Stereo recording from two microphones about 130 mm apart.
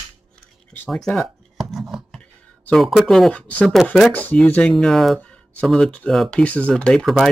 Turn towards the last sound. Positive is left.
turn(degrees=0)  # may be behind; listen again after turning